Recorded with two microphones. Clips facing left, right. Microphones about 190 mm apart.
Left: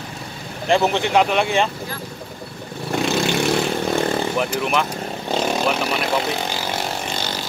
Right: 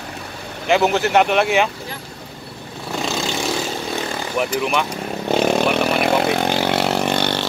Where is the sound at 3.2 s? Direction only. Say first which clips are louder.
Left 4 dB; 65° left (ahead or behind).